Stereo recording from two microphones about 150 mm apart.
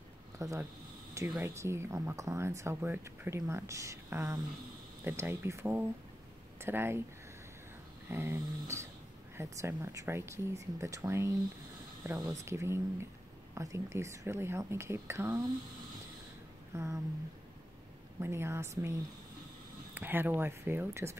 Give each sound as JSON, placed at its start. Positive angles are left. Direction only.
{"t": 0.4, "sound": "speech", "side_deg": -20}
{"t": 8.1, "sound": "speech", "side_deg": -15}
{"t": 16.7, "sound": "speech", "side_deg": -20}
{"t": 18.2, "sound": "speech", "side_deg": -15}